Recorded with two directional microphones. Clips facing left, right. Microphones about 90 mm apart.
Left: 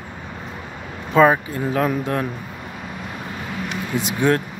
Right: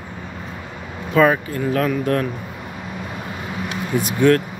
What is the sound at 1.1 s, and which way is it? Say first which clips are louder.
Speech: left 1 dB; 20° left (ahead or behind).